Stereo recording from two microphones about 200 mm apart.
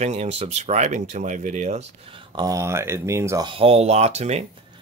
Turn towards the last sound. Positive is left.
turn(degrees=-35)  # may be behind; listen again after turning